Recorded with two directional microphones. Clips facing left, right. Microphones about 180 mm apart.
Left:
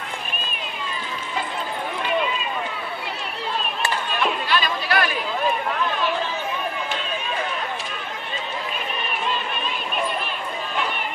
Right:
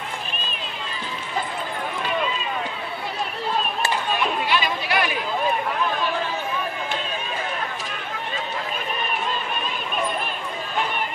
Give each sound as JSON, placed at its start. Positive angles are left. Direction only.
{"t": 4.5, "sound": "chatter", "side_deg": -15}